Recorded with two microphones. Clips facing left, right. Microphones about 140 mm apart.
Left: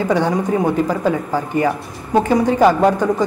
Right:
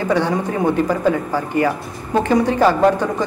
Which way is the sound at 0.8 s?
15° left (ahead or behind).